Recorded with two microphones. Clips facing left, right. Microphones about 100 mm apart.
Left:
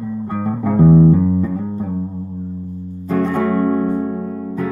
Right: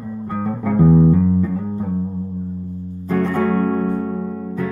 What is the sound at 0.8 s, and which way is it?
Music, centre (ahead or behind).